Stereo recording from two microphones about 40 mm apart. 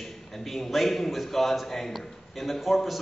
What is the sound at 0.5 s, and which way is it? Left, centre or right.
A man's voice, centre.